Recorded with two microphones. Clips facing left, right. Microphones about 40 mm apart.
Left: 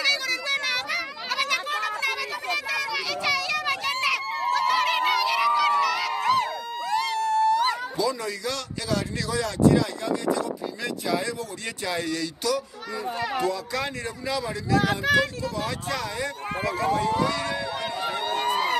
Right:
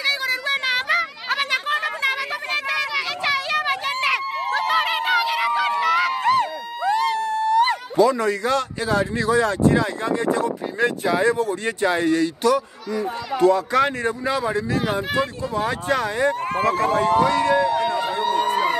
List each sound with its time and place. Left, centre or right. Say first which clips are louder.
0.0 s children playing: right 3 dB; right
2.7 s children playing: right 5 dB; right
3.3 s children playing: right 3 dB; right
4.0 s a sound: right 3 dB; right
4.9 s music: right 2 dB; centre
5.6 s a sound: right 3 dB; right
7.2 s speech: right 2 dB; right
16.5 s speech: right 2 dB; right
17.9 s a sound: right 6 dB; right